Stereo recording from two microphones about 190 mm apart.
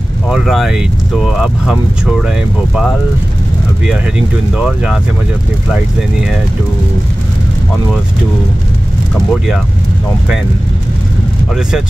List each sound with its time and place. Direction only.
0.3 s speech: centre (ahead or behind)